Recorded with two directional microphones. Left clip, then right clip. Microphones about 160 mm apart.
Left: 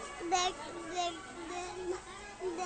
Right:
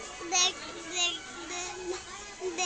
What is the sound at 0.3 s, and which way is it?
Child singing, 30° left (ahead or behind).